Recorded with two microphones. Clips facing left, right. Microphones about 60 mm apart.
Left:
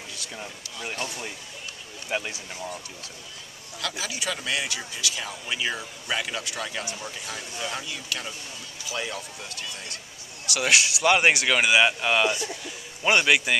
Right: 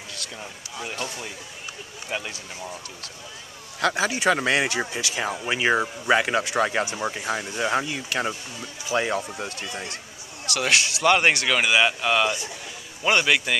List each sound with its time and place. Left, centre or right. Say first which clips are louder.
0.1 s speech: right 1 dB; centre
2.0 s speech: left 1 dB; centre
3.8 s speech: right 10 dB; right
10.4 s speech: even; centre